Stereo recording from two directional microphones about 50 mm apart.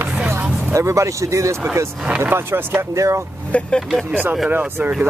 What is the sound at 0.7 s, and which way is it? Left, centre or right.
Speech, right.